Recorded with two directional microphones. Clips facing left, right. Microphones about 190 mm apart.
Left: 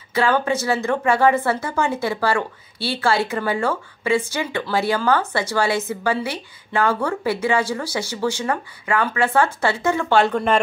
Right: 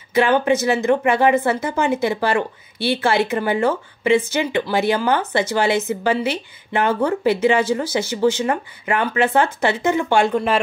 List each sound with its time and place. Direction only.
0.1 s speech: 20° right (ahead or behind)